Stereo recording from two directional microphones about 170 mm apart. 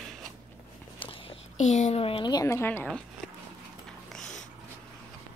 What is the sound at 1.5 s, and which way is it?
A woman's voice, 45° left (ahead or behind).